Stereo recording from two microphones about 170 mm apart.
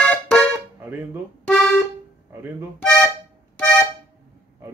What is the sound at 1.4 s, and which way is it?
Music, centre (ahead or behind).